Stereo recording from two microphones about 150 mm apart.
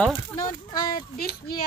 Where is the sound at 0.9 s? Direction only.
90° left.